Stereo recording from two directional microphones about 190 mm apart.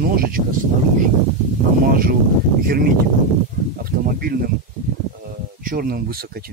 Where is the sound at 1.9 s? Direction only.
50° right (ahead or behind).